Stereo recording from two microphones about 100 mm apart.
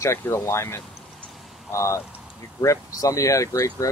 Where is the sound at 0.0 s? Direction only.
25° left (ahead or behind).